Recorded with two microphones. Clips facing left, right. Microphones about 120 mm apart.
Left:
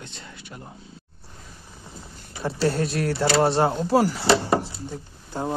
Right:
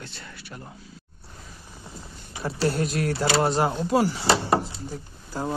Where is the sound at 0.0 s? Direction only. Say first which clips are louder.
Even; 20° left (ahead or behind).